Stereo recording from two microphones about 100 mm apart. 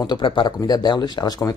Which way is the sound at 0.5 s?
40° left (ahead or behind).